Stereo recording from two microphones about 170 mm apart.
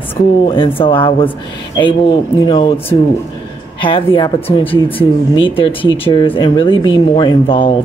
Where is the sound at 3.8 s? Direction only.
30° left (ahead or behind).